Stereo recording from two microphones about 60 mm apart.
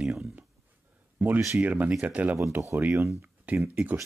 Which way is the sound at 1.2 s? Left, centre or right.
Right.